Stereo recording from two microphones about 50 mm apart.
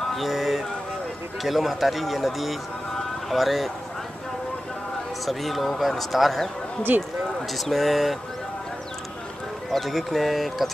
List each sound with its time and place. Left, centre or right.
0.1 s music: centre
1.4 s speech: centre
5.2 s speech: centre
6.9 s speech: right
7.5 s speech: centre
9.7 s speech: centre